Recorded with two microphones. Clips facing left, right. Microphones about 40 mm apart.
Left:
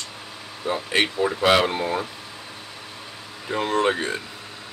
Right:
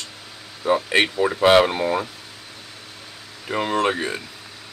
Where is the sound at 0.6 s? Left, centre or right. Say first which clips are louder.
Right 4 dB; centre.